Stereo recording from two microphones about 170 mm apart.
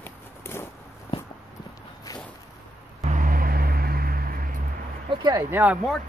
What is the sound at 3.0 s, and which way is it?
Vehicle, 50° right (ahead or behind).